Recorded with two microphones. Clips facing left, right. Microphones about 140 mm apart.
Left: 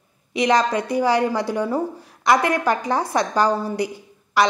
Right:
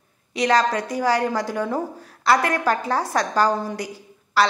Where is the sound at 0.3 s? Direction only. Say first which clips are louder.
Left 1 dB; 15° left (ahead or behind).